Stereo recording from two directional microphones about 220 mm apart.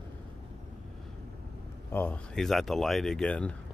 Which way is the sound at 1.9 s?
5° left (ahead or behind).